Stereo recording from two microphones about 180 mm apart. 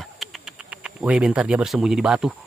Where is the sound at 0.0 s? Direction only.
Centre (ahead or behind).